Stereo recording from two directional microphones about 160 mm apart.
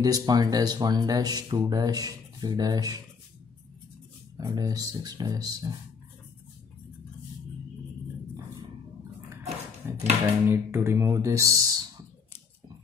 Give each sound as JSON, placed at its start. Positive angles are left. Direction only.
{"t": 0.0, "sound": "speech", "side_deg": -25}
{"t": 4.4, "sound": "speech", "side_deg": -20}
{"t": 9.8, "sound": "a sound", "side_deg": -15}
{"t": 10.4, "sound": "speech", "side_deg": -15}